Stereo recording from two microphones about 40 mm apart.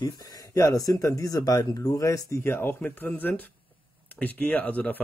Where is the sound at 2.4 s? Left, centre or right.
Left.